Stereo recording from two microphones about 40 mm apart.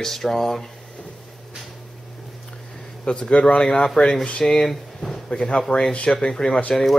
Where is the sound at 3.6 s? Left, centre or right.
Left.